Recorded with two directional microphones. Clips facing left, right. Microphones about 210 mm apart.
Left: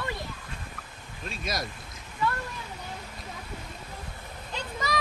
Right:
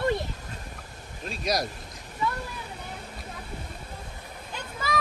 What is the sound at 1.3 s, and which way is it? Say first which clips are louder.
Boat: right 6 dB; centre (ahead or behind).